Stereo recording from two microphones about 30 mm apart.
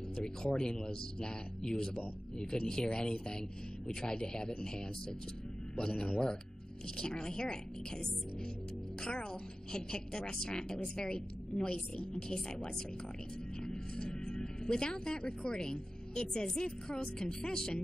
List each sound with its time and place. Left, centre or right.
0.1 s speech: left
5.8 s speech: left
13.6 s music: left
17.2 s speech: left